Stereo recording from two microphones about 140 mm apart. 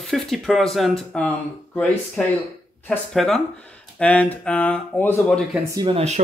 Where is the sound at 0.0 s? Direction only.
Centre (ahead or behind).